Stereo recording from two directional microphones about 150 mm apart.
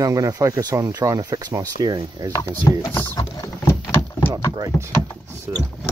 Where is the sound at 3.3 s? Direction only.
25° left (ahead or behind).